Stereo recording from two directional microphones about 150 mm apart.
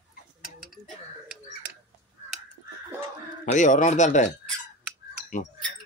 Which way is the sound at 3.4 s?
55° left (ahead or behind).